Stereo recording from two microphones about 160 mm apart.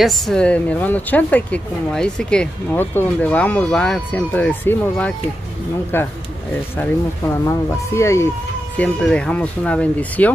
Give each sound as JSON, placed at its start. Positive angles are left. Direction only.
{"t": 0.0, "sound": "speech", "side_deg": 0}
{"t": 7.4, "sound": "speech", "side_deg": 15}